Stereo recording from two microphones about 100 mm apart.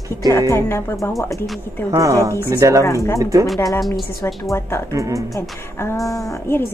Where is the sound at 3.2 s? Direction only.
35° right (ahead or behind).